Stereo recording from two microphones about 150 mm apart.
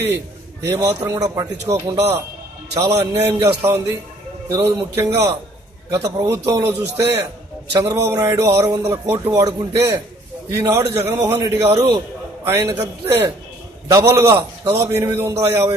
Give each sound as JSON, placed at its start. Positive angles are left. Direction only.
{"t": 0.6, "sound": "a man's voice", "side_deg": -20}
{"t": 11.0, "sound": "a man's voice", "side_deg": -15}